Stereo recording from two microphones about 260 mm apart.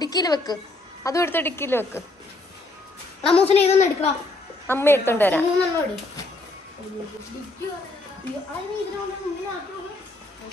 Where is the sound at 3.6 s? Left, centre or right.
Left.